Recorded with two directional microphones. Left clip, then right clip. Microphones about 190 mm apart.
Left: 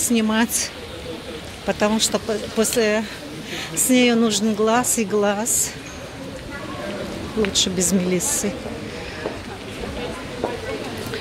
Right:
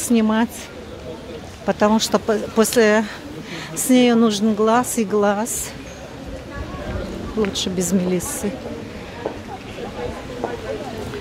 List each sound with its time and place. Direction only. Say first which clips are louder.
0.1 s speech: right 3 dB; 15° right (ahead or behind)
1.7 s speech: right 3 dB; 20° right (ahead or behind)
7.5 s speech: left 2 dB; 10° right (ahead or behind)